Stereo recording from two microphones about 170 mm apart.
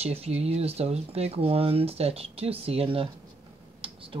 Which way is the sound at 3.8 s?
30° right (ahead or behind).